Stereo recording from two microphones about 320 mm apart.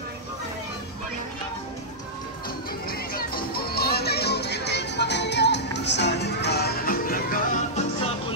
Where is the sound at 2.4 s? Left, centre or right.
Left.